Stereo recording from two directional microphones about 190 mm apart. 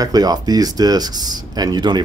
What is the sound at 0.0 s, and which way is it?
A man's voice, 20° right (ahead or behind).